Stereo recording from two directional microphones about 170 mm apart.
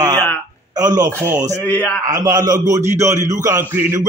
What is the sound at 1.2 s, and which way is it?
Speech, 15° right (ahead or behind).